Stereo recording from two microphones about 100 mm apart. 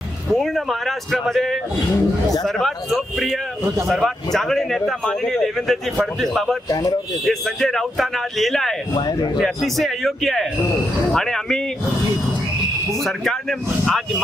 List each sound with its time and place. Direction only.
0.3 s speech: centre (ahead or behind)
6.7 s speech: 40° left (ahead or behind)
7.2 s speech: 5° left (ahead or behind)
8.9 s a man's voice: 45° left (ahead or behind)
9.4 s speech: centre (ahead or behind)
13.0 s speech: centre (ahead or behind)